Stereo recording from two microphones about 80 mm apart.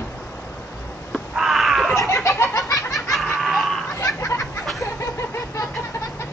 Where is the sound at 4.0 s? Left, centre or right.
Left.